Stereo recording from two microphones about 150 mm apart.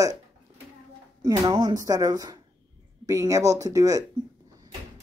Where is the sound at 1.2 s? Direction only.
30° right (ahead or behind).